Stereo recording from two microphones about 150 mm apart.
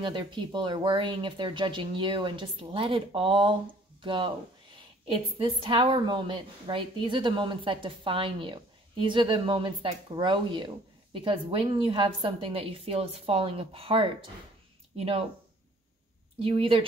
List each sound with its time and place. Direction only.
0.0 s a woman's voice: 30° right (ahead or behind)
16.3 s a woman's voice: 40° right (ahead or behind)